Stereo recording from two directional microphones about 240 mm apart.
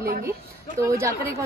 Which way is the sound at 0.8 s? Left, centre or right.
Centre.